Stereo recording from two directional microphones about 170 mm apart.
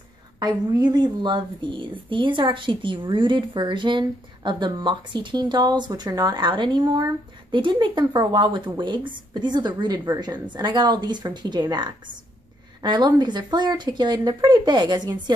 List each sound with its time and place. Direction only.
0.4 s a woman's voice: 25° right (ahead or behind)